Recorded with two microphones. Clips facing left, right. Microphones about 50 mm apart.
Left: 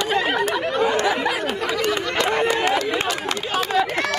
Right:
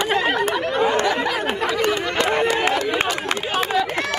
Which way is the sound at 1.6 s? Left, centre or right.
Right.